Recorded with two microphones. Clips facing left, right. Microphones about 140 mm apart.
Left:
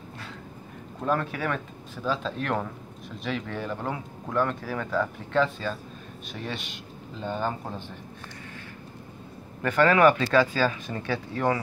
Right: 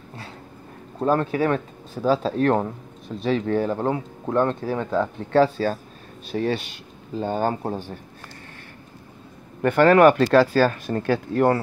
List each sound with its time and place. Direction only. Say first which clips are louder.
0.9 s speech: right 7 dB; 30° right (ahead or behind)
9.8 s speech: right 6 dB; 55° right (ahead or behind); by 10.6 s 70° right (ahead or behind)
10.6 s speech: right 6 dB; 50° right (ahead or behind)